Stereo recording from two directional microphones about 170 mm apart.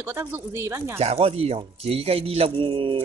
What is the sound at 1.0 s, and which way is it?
Speech, 35° right (ahead or behind).